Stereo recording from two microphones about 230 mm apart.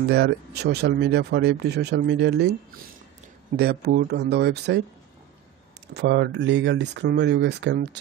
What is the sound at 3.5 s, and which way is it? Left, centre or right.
Speech, right.